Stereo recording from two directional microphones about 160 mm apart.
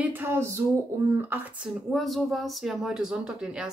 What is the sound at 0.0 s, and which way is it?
Speech, 10° right (ahead or behind).